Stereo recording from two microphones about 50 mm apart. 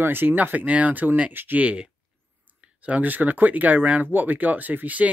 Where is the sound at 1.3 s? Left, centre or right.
Right.